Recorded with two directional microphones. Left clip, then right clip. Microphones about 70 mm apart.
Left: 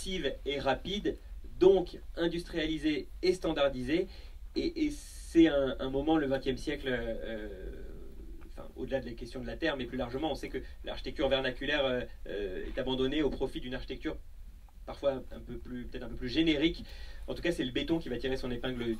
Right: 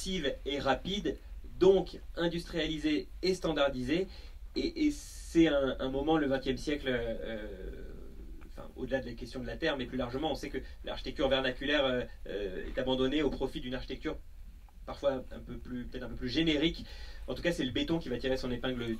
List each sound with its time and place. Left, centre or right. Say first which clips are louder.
0.0 s a man's voice: even; right
8.5 s a man's voice: even; right